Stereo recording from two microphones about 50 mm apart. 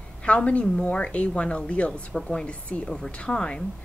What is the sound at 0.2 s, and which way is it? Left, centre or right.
A woman's voice, left.